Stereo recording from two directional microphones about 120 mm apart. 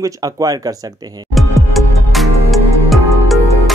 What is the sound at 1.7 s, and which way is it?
Music, centre (ahead or behind).